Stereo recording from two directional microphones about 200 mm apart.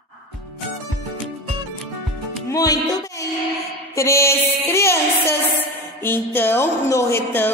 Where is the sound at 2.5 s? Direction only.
20° left (ahead or behind).